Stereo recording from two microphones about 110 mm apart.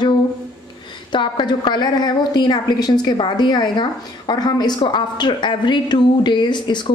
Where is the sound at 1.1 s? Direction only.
45° left (ahead or behind).